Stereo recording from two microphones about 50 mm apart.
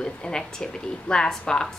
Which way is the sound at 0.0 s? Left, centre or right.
Centre.